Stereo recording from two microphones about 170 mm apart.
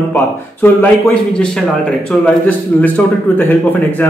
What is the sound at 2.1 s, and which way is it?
Speech, 5° left (ahead or behind).